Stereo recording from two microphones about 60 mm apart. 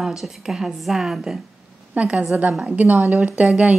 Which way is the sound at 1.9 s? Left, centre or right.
Right.